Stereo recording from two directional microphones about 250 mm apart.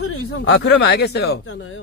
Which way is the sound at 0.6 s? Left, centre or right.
Left.